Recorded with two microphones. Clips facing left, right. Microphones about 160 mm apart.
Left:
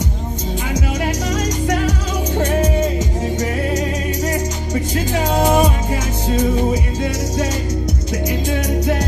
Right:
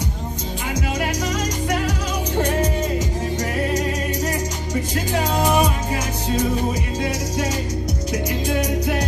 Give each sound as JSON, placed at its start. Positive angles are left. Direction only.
{"t": 5.4, "sound": "music", "side_deg": 25}